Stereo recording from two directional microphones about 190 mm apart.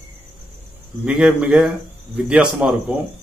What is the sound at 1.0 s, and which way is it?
Speech, 5° right (ahead or behind).